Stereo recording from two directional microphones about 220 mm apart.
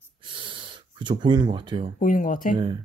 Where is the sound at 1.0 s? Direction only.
20° right (ahead or behind).